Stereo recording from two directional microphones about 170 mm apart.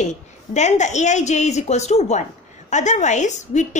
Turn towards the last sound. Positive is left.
turn(degrees=45)  # may be behind; listen again after turning